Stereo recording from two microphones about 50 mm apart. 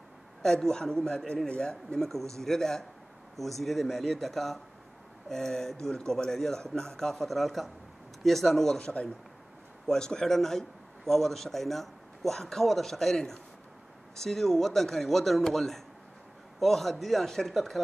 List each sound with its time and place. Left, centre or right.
0.4 s a man's voice: centre
8.7 s a man's voice: centre